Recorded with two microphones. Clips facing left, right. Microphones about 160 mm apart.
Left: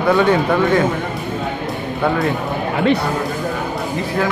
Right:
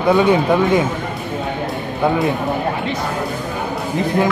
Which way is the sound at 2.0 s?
20° right (ahead or behind).